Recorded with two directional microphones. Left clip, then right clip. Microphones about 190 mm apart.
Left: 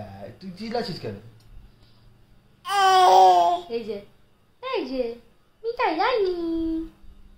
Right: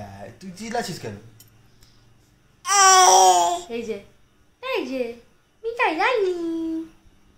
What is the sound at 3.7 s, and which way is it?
A woman's voice, 30° right (ahead or behind).